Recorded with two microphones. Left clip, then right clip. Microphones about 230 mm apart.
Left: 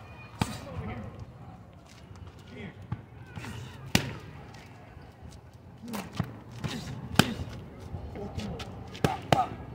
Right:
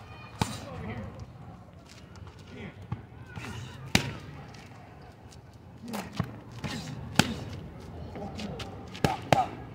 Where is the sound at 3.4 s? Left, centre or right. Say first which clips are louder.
Right 1 dB; centre.